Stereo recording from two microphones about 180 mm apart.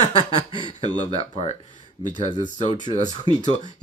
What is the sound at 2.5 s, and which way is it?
Speech, 40° left (ahead or behind).